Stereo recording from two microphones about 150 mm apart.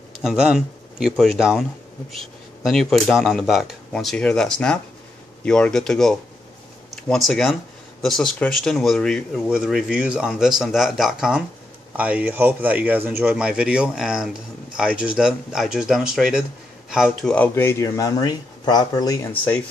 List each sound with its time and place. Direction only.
0.2 s speech: 5° right (ahead or behind)
17.3 s speech: 10° left (ahead or behind)